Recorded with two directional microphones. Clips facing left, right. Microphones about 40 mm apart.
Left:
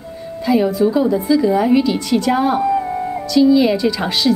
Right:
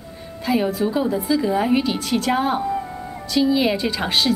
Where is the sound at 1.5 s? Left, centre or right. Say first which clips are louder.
Left 5 dB; centre.